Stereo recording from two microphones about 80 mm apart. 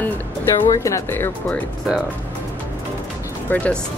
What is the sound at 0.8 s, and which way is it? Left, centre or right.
Speech, left.